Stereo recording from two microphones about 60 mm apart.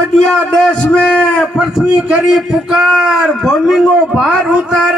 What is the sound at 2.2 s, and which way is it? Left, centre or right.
A man's voice, centre.